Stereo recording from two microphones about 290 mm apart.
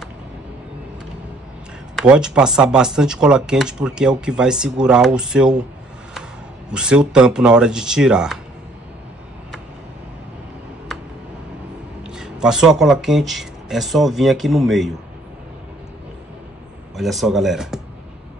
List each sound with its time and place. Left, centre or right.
2.0 s speech: centre
6.7 s speech: centre
12.0 s speech: centre
16.9 s speech: centre